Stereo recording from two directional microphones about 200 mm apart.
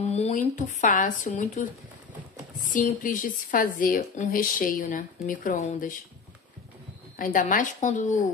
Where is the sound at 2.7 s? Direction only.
40° left (ahead or behind).